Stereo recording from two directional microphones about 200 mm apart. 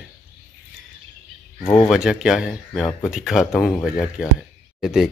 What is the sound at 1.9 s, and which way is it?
Speech, 5° right (ahead or behind).